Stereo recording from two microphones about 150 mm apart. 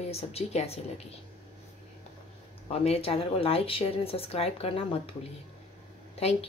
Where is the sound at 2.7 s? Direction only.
45° left (ahead or behind).